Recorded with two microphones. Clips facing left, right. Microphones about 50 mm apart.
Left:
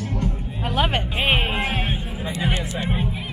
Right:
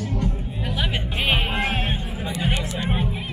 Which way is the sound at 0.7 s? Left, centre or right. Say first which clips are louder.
Left 6 dB; left.